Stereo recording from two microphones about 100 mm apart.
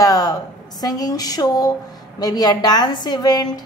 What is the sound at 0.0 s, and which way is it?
A woman's voice, 40° left (ahead or behind).